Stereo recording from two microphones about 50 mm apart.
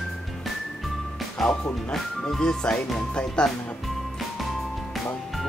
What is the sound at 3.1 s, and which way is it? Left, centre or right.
Speech, centre.